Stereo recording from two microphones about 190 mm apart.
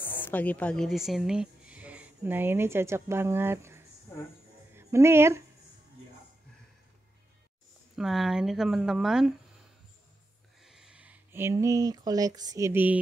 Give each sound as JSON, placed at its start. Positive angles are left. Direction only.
{"t": 0.2, "sound": "a woman's voice", "side_deg": 10}
{"t": 7.9, "sound": "speech", "side_deg": 0}
{"t": 10.6, "sound": "speech", "side_deg": -5}